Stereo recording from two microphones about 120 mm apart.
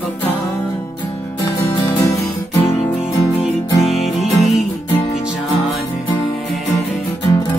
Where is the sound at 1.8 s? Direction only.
30° left (ahead or behind).